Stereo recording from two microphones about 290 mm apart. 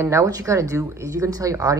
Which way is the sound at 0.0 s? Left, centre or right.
Centre.